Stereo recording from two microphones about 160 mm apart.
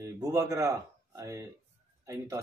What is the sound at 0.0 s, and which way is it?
Speech, 20° right (ahead or behind).